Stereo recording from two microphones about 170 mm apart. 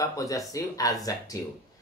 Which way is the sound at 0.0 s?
20° left (ahead or behind).